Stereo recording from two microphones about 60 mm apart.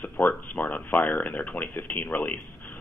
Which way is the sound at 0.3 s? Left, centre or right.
Left.